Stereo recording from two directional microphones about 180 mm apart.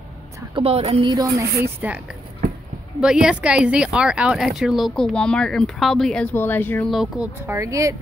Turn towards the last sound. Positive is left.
turn(degrees=-15)  # may be behind; listen again after turning